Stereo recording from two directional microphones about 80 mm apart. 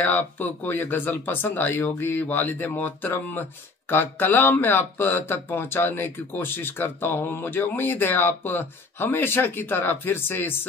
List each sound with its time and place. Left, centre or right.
0.0 s speech: left